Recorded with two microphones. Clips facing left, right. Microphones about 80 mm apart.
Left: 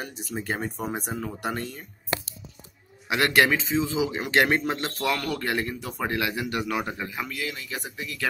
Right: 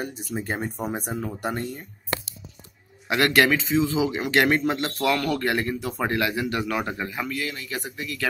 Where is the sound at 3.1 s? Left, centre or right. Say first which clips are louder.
Right 2 dB; centre.